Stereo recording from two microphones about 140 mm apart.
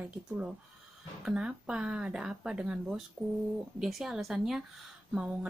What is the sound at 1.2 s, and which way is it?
A woman's voice, 5° right (ahead or behind).